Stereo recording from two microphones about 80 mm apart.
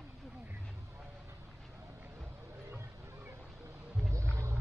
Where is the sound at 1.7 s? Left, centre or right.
Right.